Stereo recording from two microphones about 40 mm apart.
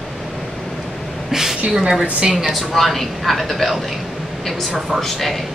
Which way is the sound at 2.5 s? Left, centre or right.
Centre.